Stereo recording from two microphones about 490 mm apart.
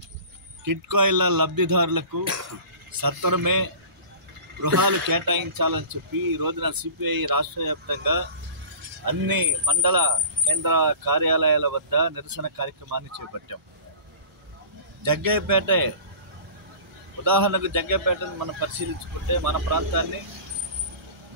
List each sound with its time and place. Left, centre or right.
0.7 s speech: right
5.0 s speech: right
15.0 s speech: right
17.2 s speech: right